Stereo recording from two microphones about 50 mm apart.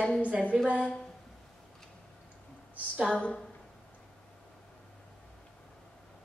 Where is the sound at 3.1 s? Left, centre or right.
Left.